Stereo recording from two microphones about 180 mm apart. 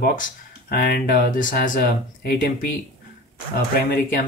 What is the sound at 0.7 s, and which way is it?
Speech, 60° left (ahead or behind).